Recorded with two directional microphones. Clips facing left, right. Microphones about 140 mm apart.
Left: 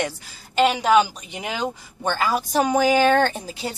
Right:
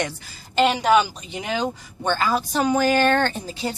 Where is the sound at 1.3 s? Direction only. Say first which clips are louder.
Right 2 dB; 10° left (ahead or behind).